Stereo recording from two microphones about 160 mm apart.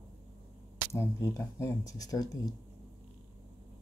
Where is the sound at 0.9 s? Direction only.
20° left (ahead or behind).